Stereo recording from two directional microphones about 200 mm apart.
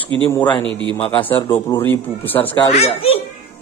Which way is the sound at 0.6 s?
25° right (ahead or behind).